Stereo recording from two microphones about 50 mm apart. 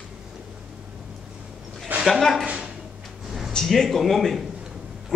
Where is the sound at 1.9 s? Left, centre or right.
Right.